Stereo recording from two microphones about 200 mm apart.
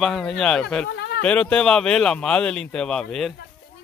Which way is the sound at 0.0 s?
5° left (ahead or behind).